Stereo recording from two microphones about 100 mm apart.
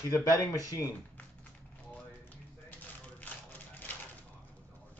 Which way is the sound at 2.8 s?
15° left (ahead or behind).